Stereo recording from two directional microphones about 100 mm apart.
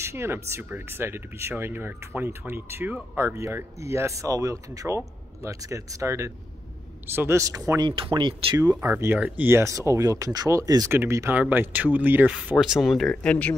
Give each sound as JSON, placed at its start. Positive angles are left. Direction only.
{"t": 0.0, "sound": "speech", "side_deg": -25}
{"t": 7.8, "sound": "speech", "side_deg": -60}
{"t": 8.5, "sound": "speech", "side_deg": -30}
{"t": 8.9, "sound": "speech", "side_deg": -20}
{"t": 10.9, "sound": "speech", "side_deg": -25}
{"t": 12.5, "sound": "speech", "side_deg": -5}
{"t": 13.1, "sound": "speech", "side_deg": 10}